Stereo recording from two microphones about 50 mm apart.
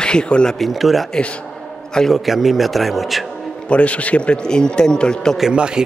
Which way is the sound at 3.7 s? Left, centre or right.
Left.